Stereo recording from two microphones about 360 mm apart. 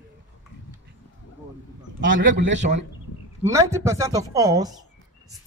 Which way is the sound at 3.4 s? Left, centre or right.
Centre.